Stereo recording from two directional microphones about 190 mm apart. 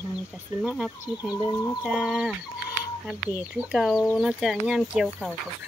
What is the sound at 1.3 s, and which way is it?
Speech, 20° left (ahead or behind).